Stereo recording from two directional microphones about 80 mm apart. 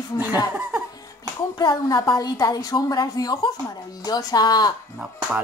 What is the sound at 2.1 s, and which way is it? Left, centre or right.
A woman's voice, left.